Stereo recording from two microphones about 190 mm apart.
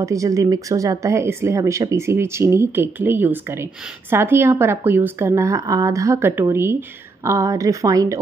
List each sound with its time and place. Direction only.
0.0 s speech: 15° right (ahead or behind)